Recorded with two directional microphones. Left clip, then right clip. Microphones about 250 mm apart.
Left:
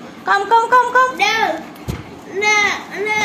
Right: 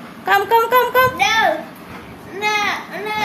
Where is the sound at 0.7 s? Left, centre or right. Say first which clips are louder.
Left 2 dB; right.